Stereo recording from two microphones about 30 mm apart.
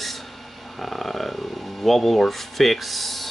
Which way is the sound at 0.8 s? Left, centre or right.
Centre.